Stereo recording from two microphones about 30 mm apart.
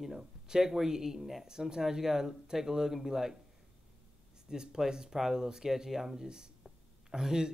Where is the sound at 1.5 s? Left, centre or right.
Right.